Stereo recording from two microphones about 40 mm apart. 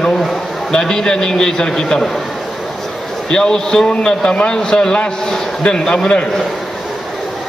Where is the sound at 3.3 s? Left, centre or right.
Centre.